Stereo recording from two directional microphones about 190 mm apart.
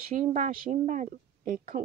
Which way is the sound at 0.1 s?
40° right (ahead or behind).